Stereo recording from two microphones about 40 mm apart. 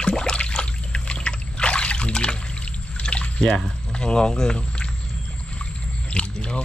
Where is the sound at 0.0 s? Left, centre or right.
Left.